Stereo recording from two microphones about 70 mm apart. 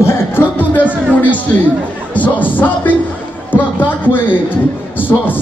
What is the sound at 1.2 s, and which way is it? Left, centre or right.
Speech, left.